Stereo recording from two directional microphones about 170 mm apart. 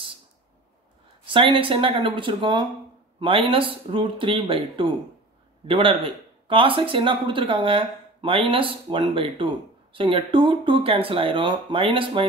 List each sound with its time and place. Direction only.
1.2 s speech: 30° right (ahead or behind)